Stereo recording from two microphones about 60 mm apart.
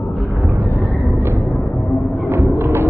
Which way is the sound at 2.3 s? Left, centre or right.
Right.